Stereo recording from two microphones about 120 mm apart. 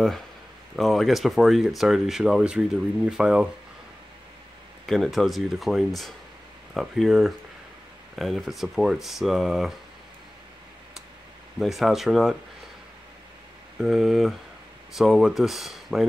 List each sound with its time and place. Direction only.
0.7 s speech: centre (ahead or behind)
4.8 s speech: 5° left (ahead or behind)
11.6 s speech: centre (ahead or behind)
13.7 s speech: 5° right (ahead or behind)